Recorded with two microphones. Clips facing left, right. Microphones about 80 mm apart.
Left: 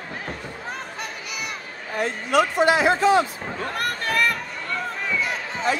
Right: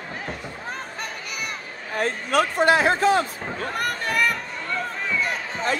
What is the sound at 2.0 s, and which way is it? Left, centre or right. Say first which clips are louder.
A woman's voice: left 1 dB; right.